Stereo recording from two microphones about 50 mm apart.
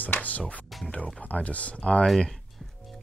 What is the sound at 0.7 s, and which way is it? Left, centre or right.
Speech, centre.